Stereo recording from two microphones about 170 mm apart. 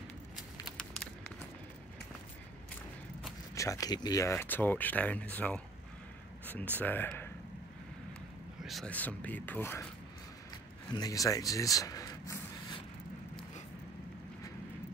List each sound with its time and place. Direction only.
0.7 s a sound: 5° left (ahead or behind)
3.5 s speech: 20° left (ahead or behind)
6.4 s a sound: 10° left (ahead or behind)
6.8 s speech: 10° left (ahead or behind)
8.6 s speech: 5° left (ahead or behind)
10.9 s speech: 20° left (ahead or behind)